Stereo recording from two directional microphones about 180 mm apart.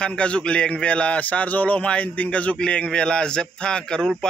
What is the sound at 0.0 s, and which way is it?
A man's voice, 5° left (ahead or behind).